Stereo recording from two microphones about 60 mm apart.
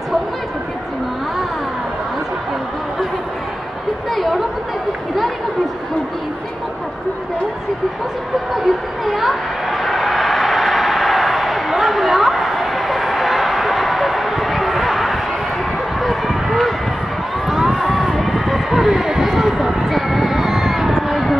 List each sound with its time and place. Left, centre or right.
4.1 s chatter: centre
8.6 s a sound: centre
16.0 s run: centre